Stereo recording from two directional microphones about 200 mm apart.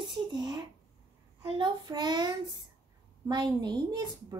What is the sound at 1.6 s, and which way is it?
Speech, 20° right (ahead or behind).